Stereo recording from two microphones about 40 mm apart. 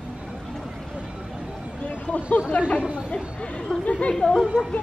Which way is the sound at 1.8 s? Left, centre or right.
Left.